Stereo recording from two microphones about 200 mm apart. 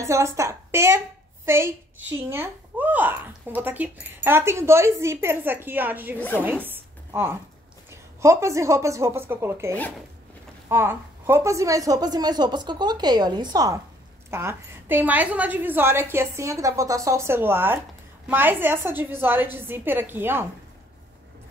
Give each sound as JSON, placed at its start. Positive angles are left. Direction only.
{"t": 0.0, "sound": "a woman's voice", "side_deg": -15}
{"t": 6.1, "sound": "speech", "side_deg": 10}
{"t": 6.4, "sound": "a sound", "side_deg": -10}
{"t": 7.9, "sound": "a woman's voice", "side_deg": -15}